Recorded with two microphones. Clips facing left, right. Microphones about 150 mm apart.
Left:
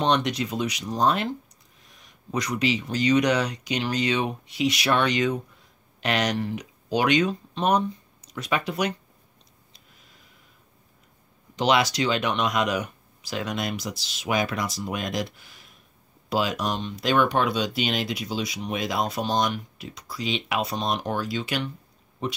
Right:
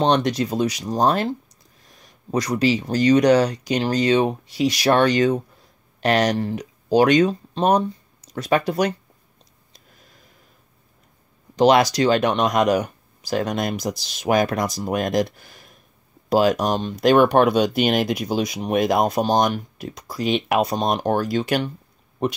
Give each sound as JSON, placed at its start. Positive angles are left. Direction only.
{"t": 0.0, "sound": "speech", "side_deg": -35}
{"t": 11.5, "sound": "speech", "side_deg": -40}